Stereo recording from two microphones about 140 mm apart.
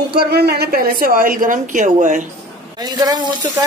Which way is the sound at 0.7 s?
90° right.